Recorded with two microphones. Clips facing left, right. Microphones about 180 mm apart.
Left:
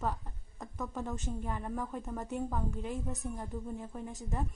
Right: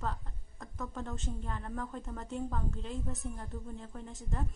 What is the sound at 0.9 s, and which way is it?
A woman's voice, 15° left (ahead or behind).